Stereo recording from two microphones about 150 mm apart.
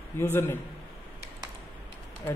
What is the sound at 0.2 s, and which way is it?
Speech, 15° left (ahead or behind).